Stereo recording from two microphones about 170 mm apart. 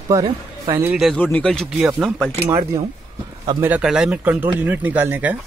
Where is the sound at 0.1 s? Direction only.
20° right (ahead or behind).